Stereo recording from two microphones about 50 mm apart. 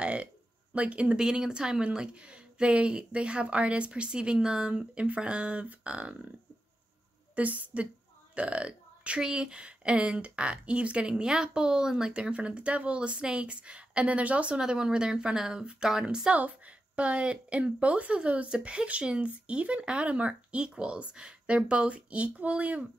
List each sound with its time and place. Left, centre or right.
0.0 s a sound: right
0.7 s a woman's voice: right
7.3 s a woman's voice: right; by 16.3 s centre
16.3 s a woman's voice: right